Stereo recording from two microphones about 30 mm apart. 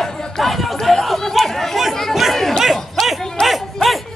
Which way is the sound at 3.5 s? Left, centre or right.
Centre.